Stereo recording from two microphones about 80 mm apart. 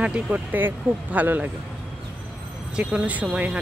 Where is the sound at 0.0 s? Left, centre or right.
Centre.